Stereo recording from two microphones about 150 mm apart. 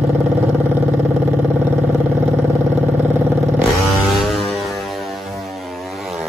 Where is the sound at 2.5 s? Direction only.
15° right (ahead or behind).